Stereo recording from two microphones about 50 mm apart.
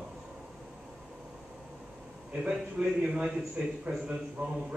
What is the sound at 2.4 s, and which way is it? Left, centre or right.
Speech, right.